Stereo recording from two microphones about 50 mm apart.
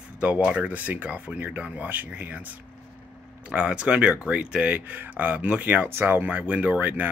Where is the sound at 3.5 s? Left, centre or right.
Right.